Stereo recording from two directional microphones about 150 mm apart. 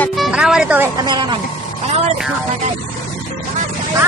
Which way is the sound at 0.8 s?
25° right (ahead or behind).